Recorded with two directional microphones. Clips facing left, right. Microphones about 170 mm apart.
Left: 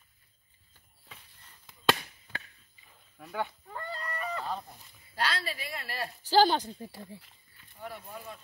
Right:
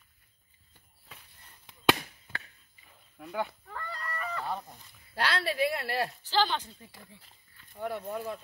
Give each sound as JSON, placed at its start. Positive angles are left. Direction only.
{"t": 3.2, "sound": "speech", "side_deg": -10}
{"t": 3.6, "sound": "fowl", "side_deg": 25}
{"t": 5.1, "sound": "speech", "side_deg": -65}
{"t": 6.2, "sound": "speech", "side_deg": 40}
{"t": 7.7, "sound": "speech", "side_deg": -65}